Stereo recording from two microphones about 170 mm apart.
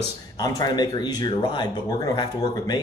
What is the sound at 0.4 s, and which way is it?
Speech, 25° left (ahead or behind).